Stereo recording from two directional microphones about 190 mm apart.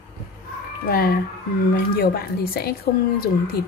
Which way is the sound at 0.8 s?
50° left (ahead or behind).